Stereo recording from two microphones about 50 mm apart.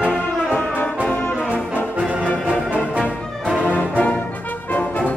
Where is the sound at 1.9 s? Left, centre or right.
Right.